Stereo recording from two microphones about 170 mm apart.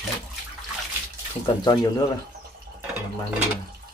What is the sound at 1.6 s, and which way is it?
Speech, 25° left (ahead or behind).